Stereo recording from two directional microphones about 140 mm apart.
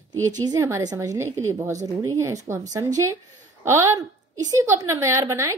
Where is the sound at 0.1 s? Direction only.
25° right (ahead or behind).